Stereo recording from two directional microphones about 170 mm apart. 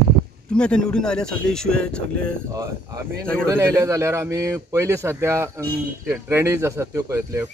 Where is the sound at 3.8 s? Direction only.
20° right (ahead or behind).